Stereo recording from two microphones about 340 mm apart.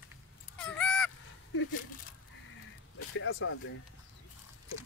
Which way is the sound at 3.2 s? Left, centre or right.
Left.